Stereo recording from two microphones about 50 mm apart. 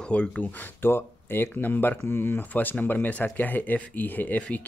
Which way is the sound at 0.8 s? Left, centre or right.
Left.